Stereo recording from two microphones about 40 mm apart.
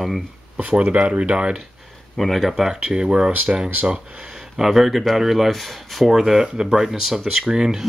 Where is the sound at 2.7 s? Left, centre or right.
Centre.